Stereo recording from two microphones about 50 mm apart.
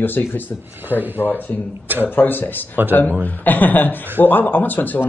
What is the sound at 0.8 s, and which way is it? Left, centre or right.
Speech, right.